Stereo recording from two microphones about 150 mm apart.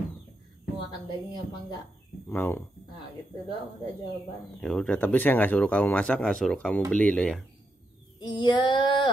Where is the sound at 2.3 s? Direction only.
15° left (ahead or behind).